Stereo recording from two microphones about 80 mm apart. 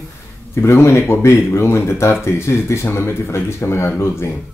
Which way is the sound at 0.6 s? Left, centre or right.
Left.